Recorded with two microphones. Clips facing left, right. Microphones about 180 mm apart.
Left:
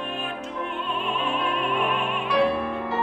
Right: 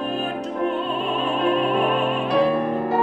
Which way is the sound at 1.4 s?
35° right (ahead or behind).